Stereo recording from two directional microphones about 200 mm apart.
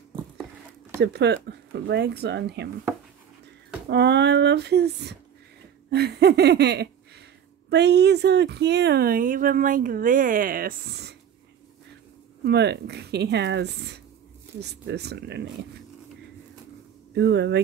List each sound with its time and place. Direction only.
1.0 s speech: 60° right (ahead or behind)
3.9 s speech: 60° right (ahead or behind)
12.4 s speech: 55° right (ahead or behind)
17.1 s speech: 60° right (ahead or behind)